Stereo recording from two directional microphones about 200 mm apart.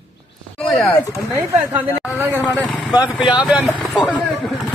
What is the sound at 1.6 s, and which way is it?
A woman's voice, 10° right (ahead or behind).